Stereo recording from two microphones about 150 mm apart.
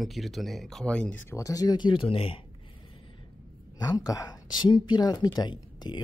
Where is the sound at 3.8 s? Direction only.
25° left (ahead or behind).